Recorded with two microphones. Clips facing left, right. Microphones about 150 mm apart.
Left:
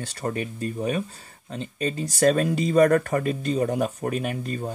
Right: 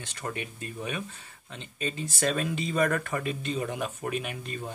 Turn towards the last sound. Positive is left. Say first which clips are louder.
# left 7 dB
turn(degrees=40)  # may be behind; listen again after turning